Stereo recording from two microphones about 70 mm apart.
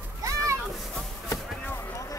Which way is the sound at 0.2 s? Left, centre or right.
Right.